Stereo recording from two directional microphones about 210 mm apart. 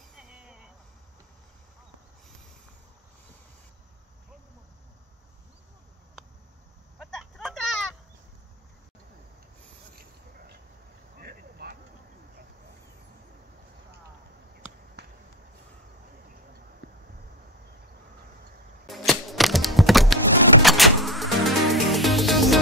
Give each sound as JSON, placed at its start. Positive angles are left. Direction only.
{"t": 0.3, "sound": "vehicle", "side_deg": -5}
{"t": 7.0, "sound": "a sound", "side_deg": 0}
{"t": 11.1, "sound": "vehicle", "side_deg": -45}
{"t": 15.0, "sound": "a sound", "side_deg": -50}
{"t": 18.9, "sound": "typewriter", "side_deg": 0}
{"t": 20.6, "sound": "music", "side_deg": 0}